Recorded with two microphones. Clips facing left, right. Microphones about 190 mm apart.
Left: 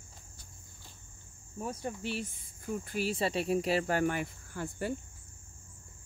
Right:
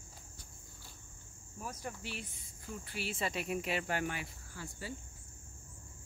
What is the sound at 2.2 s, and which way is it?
Speech, 50° left (ahead or behind).